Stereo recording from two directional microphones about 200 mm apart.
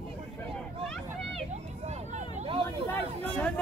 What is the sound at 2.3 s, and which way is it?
Hubbub, 30° right (ahead or behind).